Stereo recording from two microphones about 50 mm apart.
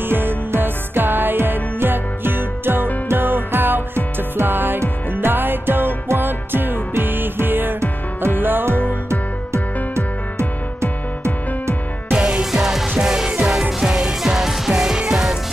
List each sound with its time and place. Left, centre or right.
0.0 s music: right
10.8 s music: right
12.1 s music: centre